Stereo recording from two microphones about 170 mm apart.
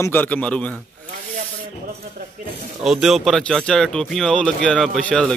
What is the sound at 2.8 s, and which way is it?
Speech, centre (ahead or behind).